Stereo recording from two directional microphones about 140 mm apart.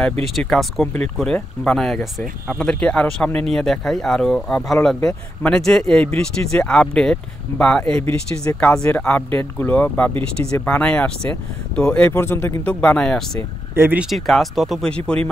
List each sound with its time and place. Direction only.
0.4 s speech: centre (ahead or behind)
8.0 s speech: 20° left (ahead or behind)
8.5 s speech: 5° left (ahead or behind)
13.7 s speech: 15° right (ahead or behind)
14.0 s speech: centre (ahead or behind)